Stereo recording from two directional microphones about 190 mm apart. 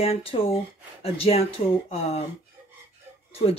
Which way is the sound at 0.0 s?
30° left (ahead or behind).